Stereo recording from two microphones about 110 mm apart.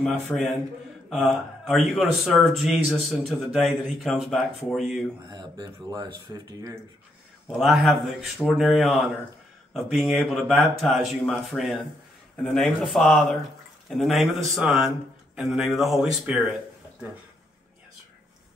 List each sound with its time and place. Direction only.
0.0 s speech: 5° left (ahead or behind)
5.3 s speech: 40° right (ahead or behind)
7.5 s speech: centre (ahead or behind)